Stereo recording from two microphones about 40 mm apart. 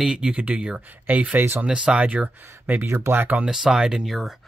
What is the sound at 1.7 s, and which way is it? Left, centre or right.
Speech, right.